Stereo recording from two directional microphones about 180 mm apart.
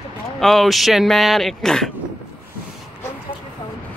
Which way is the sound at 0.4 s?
Centre (ahead or behind).